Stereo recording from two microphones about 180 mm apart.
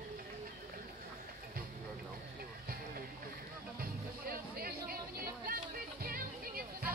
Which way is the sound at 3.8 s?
55° right (ahead or behind).